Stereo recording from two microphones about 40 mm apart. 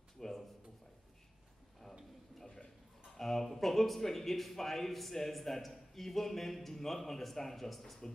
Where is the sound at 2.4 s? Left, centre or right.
Centre.